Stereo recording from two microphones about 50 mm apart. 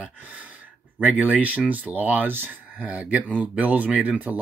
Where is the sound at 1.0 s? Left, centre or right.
Right.